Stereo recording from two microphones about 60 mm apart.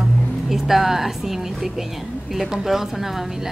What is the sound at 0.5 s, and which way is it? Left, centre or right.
Speech, centre.